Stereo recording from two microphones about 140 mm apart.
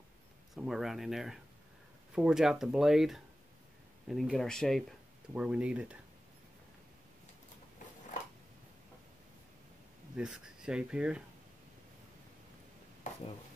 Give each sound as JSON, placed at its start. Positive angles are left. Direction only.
{"t": 0.6, "sound": "speech", "side_deg": 0}
{"t": 5.3, "sound": "speech", "side_deg": -10}
{"t": 10.1, "sound": "speech", "side_deg": -5}
{"t": 13.0, "sound": "stir", "side_deg": 60}